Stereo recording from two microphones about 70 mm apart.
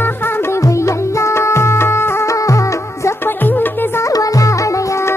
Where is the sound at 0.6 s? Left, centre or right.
Left.